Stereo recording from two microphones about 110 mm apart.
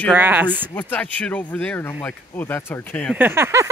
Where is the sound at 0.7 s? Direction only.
15° left (ahead or behind).